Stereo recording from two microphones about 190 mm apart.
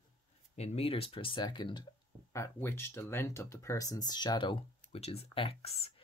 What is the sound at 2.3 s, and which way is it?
Speech, 15° left (ahead or behind).